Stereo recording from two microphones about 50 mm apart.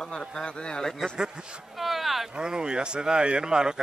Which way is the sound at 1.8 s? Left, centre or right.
Centre.